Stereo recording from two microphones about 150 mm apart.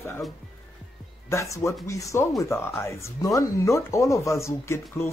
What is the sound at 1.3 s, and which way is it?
Speech, 20° left (ahead or behind).